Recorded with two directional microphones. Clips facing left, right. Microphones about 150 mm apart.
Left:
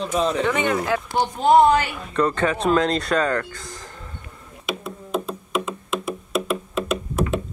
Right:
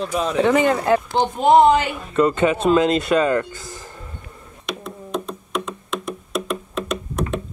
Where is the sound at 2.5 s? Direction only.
5° right (ahead or behind).